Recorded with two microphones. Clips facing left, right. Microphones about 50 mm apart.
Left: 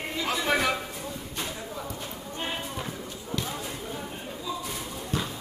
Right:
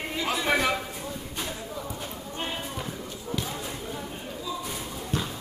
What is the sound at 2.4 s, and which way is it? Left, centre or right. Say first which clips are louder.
Basketball bounce: left 1 dB; centre.